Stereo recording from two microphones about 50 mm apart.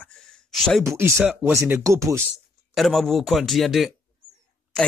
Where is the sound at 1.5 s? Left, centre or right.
Right.